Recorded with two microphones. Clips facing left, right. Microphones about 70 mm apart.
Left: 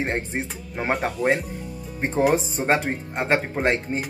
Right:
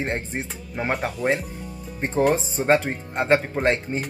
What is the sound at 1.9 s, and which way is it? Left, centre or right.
Speech, centre.